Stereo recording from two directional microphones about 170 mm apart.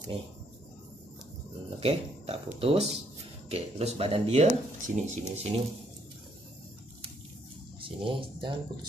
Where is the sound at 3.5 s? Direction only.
35° right (ahead or behind).